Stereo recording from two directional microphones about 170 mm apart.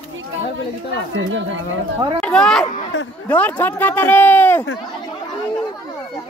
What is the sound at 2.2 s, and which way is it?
Speech, 5° left (ahead or behind).